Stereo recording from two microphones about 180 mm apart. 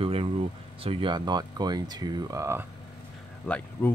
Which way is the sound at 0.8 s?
30° right (ahead or behind).